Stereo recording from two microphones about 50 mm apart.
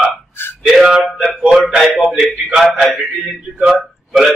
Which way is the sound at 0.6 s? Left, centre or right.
Centre.